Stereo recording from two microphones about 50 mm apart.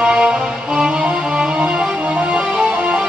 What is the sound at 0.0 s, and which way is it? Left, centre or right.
Music, centre.